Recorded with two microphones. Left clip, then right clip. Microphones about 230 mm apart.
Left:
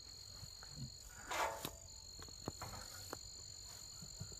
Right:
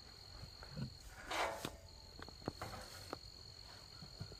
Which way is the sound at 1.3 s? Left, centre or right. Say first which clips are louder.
Even; right.